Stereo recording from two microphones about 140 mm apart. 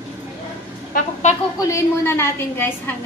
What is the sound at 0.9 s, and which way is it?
Speech, 60° left (ahead or behind).